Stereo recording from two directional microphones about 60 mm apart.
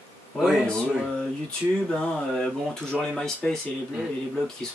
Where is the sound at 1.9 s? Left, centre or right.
Centre.